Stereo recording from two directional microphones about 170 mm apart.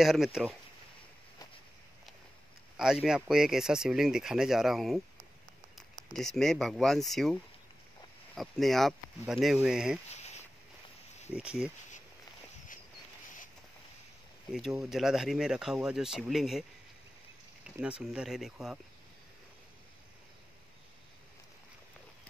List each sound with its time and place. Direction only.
0.0 s speech: centre (ahead or behind)
2.8 s speech: 5° right (ahead or behind)
8.4 s speech: centre (ahead or behind)
10.1 s a sound: 40° left (ahead or behind)
11.3 s speech: 5° right (ahead or behind)
14.8 s speech: centre (ahead or behind)
17.7 s speech: 5° right (ahead or behind)